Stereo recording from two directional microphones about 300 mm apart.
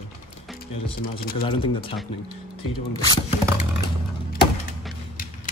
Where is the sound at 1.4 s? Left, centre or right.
Centre.